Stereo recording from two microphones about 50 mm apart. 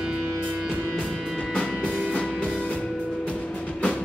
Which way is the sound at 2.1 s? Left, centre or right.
Left.